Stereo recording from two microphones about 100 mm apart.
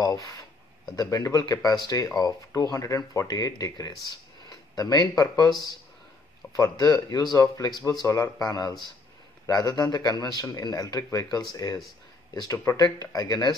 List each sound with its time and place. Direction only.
0.0 s speech: 35° left (ahead or behind)
4.5 s a sound: 40° left (ahead or behind)
5.1 s speech: 40° left (ahead or behind)